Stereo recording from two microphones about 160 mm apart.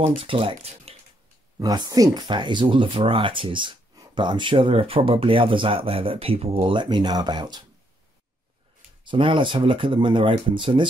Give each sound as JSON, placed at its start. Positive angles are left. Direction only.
{"t": 0.2, "sound": "speech", "side_deg": -35}
{"t": 1.6, "sound": "speech", "side_deg": -25}
{"t": 9.0, "sound": "speech", "side_deg": -30}